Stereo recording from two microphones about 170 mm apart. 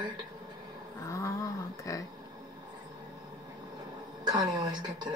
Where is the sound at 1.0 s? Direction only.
20° left (ahead or behind).